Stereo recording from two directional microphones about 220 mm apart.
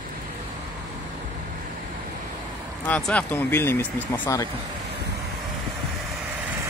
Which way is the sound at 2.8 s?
5° left (ahead or behind).